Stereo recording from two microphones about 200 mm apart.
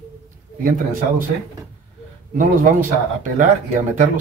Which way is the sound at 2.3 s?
40° right (ahead or behind).